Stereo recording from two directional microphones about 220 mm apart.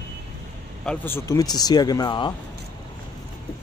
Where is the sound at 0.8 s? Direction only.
10° left (ahead or behind).